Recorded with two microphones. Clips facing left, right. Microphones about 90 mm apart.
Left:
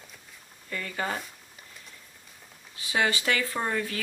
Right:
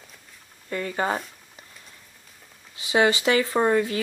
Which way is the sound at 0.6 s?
30° right (ahead or behind).